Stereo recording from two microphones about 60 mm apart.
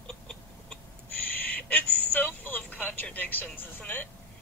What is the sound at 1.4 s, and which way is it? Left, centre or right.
Telephone, left.